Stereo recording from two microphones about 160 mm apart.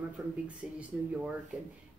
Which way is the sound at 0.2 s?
20° right (ahead or behind).